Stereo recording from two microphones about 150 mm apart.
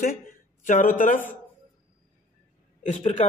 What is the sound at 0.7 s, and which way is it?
Speech, 60° left (ahead or behind).